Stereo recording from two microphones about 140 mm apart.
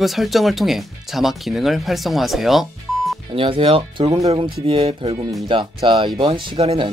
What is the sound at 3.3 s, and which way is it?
Speech, 40° right (ahead or behind).